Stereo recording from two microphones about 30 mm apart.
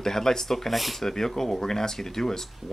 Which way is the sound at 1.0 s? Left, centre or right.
Centre.